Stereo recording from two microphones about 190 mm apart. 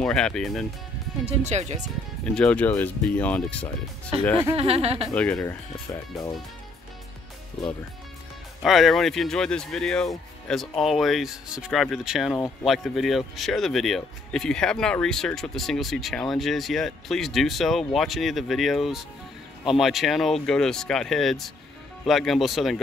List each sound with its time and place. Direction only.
0.0 s speech: 5° left (ahead or behind)
1.2 s speech: 35° right (ahead or behind)
2.2 s speech: 5° left (ahead or behind)
4.1 s speech: 30° right (ahead or behind)
5.0 s speech: 5° left (ahead or behind)
8.6 s speech: centre (ahead or behind)